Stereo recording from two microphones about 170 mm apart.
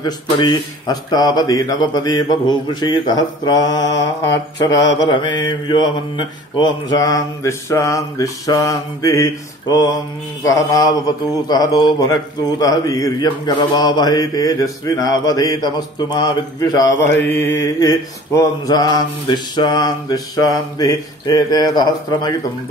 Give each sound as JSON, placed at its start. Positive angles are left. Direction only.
{"t": 0.0, "sound": "a man's voice", "side_deg": 25}